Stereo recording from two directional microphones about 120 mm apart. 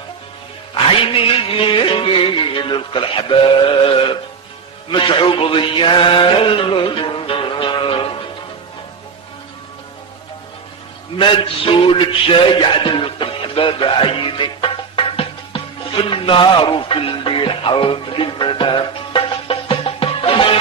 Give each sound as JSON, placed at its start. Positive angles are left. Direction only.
{"t": 0.8, "sound": "music", "side_deg": 50}
{"t": 11.1, "sound": "music", "side_deg": 45}